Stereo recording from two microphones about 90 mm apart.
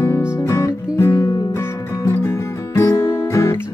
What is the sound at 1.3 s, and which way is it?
Music, 45° left (ahead or behind).